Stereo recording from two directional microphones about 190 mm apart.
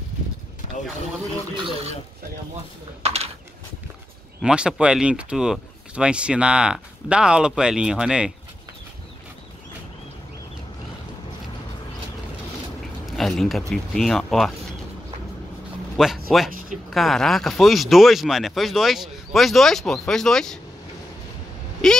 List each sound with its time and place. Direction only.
3.0 s speech: 35° right (ahead or behind)
4.4 s speech: 5° right (ahead or behind)
13.0 s speech: centre (ahead or behind)
16.0 s speech: centre (ahead or behind)
21.8 s speech: 5° left (ahead or behind)